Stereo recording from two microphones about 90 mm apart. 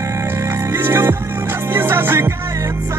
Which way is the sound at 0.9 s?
25° right (ahead or behind).